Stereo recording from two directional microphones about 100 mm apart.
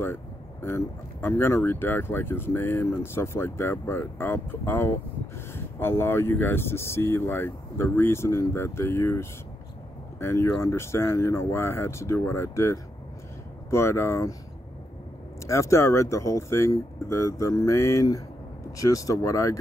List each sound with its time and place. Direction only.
0.0 s speech: 25° left (ahead or behind)
15.4 s speech: 30° left (ahead or behind)